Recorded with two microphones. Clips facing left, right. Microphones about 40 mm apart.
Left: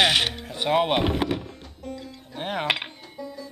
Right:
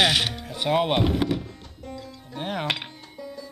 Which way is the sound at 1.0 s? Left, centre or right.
Centre.